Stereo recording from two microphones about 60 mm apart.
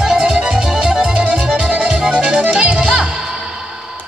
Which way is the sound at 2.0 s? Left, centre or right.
Centre.